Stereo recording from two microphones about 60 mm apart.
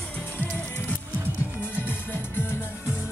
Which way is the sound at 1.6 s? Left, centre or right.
Left.